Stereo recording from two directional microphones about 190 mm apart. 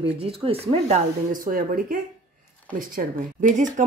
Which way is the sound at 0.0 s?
30° right (ahead or behind).